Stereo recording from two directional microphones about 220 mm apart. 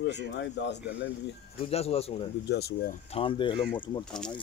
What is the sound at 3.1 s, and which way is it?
Speech, 25° left (ahead or behind).